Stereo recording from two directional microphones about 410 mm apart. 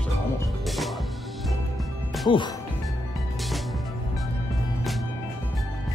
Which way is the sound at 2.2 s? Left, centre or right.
Centre.